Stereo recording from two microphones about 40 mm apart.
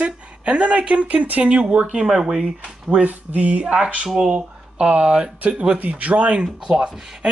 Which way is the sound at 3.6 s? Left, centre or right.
Right.